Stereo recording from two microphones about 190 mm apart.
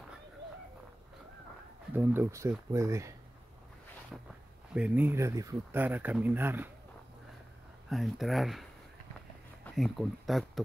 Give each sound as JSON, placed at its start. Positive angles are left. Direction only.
{"t": 2.0, "sound": "speech", "side_deg": -15}
{"t": 4.1, "sound": "speech", "side_deg": -5}
{"t": 7.9, "sound": "speech", "side_deg": 0}
{"t": 9.8, "sound": "speech", "side_deg": 0}